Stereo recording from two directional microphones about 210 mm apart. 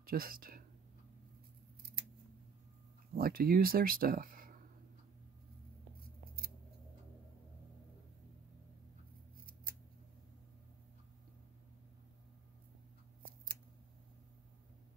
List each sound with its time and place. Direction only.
0.0 s speech: 45° right (ahead or behind)
3.2 s speech: 45° right (ahead or behind)